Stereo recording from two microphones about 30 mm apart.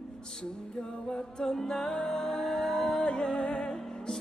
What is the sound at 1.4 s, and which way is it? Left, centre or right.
Music, centre.